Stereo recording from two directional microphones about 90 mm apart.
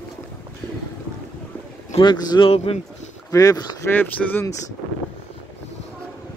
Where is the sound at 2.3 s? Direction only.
45° left (ahead or behind).